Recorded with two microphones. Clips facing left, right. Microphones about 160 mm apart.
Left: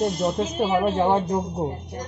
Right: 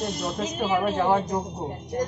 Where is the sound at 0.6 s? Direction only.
30° left (ahead or behind).